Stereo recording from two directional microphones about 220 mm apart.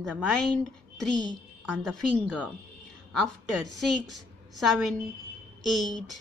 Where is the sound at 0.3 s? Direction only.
5° left (ahead or behind).